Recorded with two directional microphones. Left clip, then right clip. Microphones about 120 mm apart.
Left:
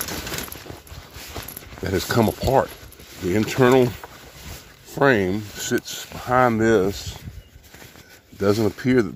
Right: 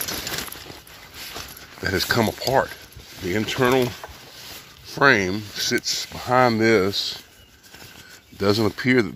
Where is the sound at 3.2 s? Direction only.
75° left (ahead or behind).